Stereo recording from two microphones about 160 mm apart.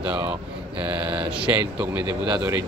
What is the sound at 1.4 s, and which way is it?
Speech, 10° right (ahead or behind).